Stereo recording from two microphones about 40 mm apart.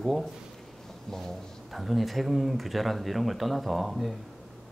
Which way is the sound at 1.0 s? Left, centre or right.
Centre.